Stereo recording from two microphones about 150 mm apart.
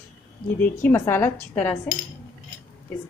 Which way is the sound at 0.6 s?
15° left (ahead or behind).